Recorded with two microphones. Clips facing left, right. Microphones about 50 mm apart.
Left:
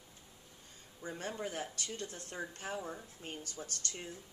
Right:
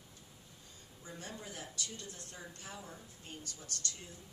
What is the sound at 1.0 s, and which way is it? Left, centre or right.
A woman's voice, left.